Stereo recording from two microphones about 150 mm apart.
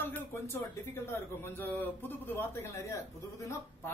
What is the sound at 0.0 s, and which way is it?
A man's voice, 15° left (ahead or behind).